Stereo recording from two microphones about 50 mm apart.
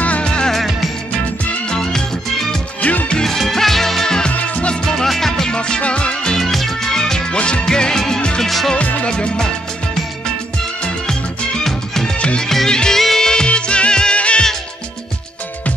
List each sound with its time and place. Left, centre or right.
0.0 s music: left
0.5 s music: centre
1.7 s music: centre
2.8 s music: left
3.1 s music: centre
4.3 s music: left
4.8 s music: centre
8.4 s music: centre
8.7 s music: left
9.1 s music: centre
11.6 s music: centre
12.2 s music: left
12.4 s music: centre